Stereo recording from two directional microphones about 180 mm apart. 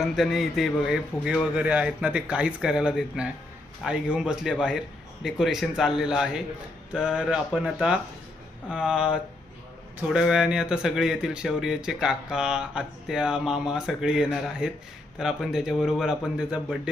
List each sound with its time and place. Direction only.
0.0 s speech: centre (ahead or behind)